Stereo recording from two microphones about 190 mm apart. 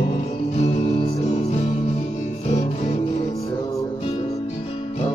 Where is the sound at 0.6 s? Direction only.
35° left (ahead or behind).